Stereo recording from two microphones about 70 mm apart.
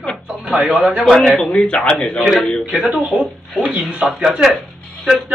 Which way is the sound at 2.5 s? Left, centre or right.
Centre.